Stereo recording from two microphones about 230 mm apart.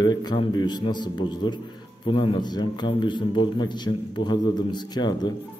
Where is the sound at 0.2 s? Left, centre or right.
Centre.